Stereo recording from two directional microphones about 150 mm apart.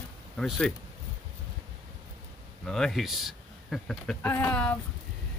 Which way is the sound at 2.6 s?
5° left (ahead or behind).